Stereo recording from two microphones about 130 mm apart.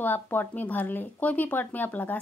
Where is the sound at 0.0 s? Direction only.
15° left (ahead or behind).